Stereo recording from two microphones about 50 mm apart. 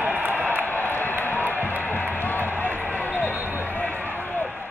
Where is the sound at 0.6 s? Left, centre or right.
Left.